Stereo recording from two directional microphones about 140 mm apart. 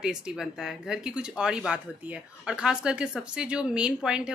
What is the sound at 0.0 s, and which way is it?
Speech, 5° right (ahead or behind).